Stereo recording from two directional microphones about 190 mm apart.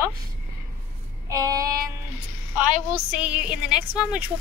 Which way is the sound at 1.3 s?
20° right (ahead or behind).